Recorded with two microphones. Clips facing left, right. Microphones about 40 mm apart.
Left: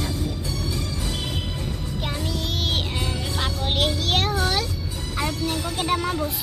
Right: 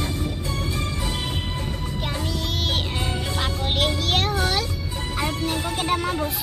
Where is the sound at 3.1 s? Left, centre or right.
Centre.